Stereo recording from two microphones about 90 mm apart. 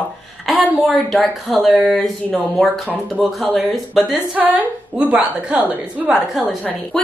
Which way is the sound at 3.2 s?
5° left (ahead or behind).